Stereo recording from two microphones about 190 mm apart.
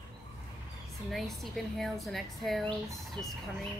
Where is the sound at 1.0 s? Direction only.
Centre (ahead or behind).